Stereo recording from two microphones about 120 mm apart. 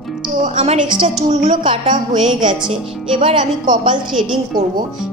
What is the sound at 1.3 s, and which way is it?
Speech, 75° right (ahead or behind).